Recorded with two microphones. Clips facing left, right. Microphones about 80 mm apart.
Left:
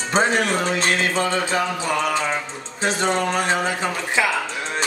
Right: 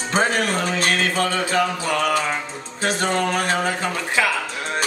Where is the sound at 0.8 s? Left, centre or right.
Left.